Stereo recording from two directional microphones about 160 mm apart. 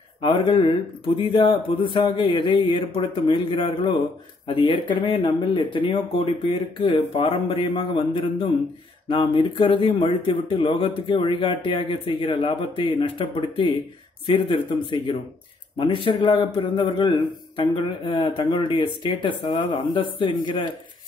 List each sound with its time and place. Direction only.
0.2 s speech: 30° left (ahead or behind)